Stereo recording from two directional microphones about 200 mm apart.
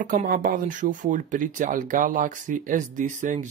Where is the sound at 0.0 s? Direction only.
40° right (ahead or behind).